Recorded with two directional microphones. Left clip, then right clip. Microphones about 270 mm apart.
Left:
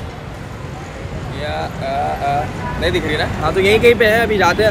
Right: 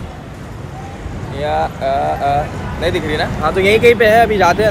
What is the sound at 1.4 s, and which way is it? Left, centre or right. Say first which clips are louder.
Speech: right 6 dB; right.